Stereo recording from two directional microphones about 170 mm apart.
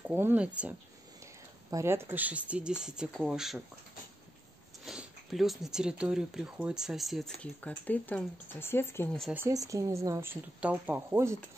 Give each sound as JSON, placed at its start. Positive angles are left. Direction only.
{"t": 0.1, "sound": "speech", "side_deg": -10}
{"t": 4.8, "sound": "speech", "side_deg": 0}
{"t": 9.3, "sound": "speech", "side_deg": -15}